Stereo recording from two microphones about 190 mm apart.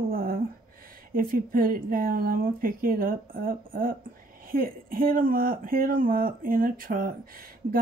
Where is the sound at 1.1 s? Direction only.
50° right (ahead or behind).